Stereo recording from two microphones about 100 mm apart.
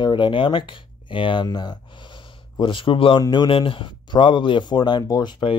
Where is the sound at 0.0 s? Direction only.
50° left (ahead or behind).